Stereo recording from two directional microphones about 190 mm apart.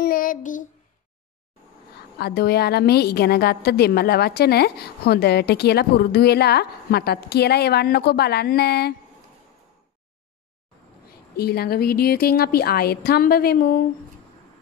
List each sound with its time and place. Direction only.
0.0 s child singing: 50° left (ahead or behind)
2.1 s a woman's voice: 55° left (ahead or behind)
11.3 s a woman's voice: 55° left (ahead or behind)